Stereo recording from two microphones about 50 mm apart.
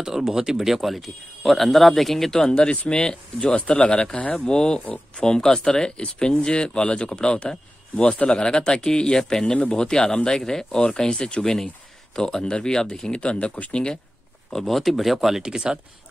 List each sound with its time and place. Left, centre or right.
0.0 s speech: centre
2.5 s speech: left
14.5 s speech: centre